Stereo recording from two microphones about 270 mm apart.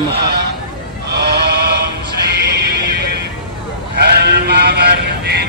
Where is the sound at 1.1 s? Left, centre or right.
Right.